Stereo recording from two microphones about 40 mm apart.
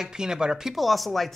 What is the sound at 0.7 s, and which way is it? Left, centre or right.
Speech, centre.